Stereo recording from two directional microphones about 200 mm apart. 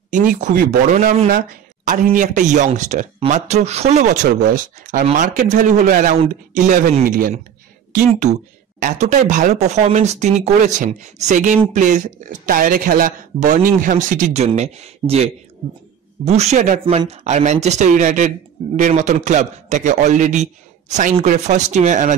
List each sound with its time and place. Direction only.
0.1 s speech: 40° right (ahead or behind)